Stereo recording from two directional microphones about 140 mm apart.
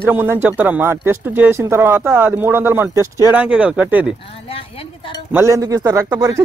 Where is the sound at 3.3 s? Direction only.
10° right (ahead or behind).